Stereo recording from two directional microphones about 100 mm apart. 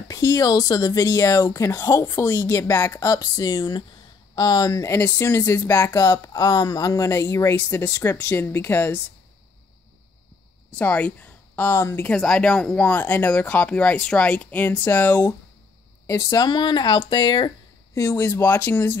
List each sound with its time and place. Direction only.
0.1 s speech: 35° left (ahead or behind)
4.9 s speech: 25° left (ahead or behind)
10.8 s speech: 15° left (ahead or behind)
12.1 s speech: 10° left (ahead or behind)
16.1 s speech: 35° left (ahead or behind); by 17.5 s 50° left (ahead or behind)
17.9 s speech: 30° left (ahead or behind)